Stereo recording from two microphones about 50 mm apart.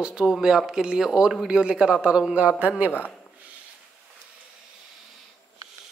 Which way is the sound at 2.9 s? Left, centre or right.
Left.